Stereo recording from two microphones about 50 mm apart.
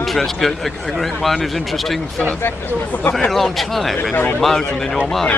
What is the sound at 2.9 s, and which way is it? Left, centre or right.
Speech, left.